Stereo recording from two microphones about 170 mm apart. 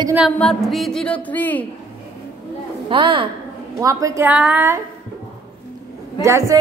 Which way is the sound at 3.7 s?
20° right (ahead or behind).